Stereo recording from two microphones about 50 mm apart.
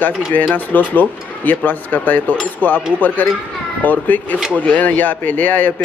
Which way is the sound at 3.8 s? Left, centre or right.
Left.